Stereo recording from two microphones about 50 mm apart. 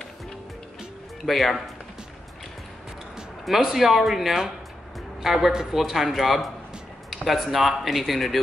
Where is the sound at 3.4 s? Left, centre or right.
Centre.